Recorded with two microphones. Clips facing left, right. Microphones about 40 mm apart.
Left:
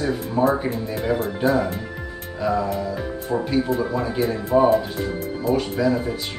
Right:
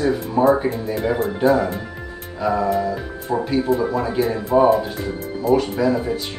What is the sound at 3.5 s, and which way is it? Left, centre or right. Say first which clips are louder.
Speech: right 3 dB; centre.